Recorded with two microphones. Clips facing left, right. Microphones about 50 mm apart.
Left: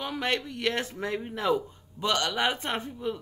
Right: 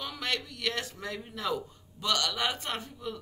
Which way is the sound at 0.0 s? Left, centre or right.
Left.